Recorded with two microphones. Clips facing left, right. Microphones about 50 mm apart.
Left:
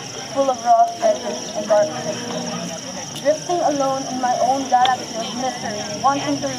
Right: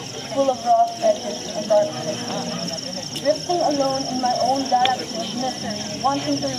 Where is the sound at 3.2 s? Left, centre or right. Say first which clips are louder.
Left 2 dB; centre.